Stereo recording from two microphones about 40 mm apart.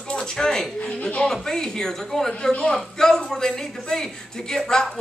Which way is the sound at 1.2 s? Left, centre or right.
Centre.